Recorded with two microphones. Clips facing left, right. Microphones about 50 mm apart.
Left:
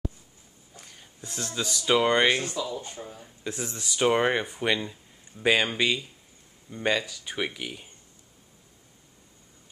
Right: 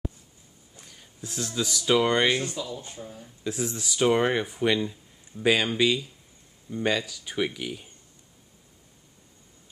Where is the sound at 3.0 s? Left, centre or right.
Centre.